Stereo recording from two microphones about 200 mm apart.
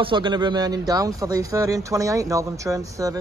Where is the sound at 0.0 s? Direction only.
25° right (ahead or behind).